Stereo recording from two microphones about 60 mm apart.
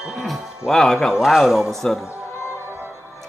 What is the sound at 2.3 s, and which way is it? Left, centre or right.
Music, left.